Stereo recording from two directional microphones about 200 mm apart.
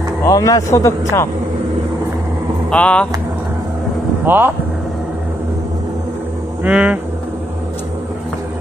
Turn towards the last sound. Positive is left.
turn(degrees=-5)  # may be behind; listen again after turning